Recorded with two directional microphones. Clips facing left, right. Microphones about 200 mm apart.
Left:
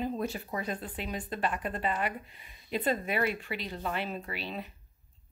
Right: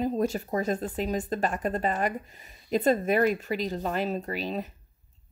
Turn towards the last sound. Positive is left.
turn(degrees=-40)  # may be behind; listen again after turning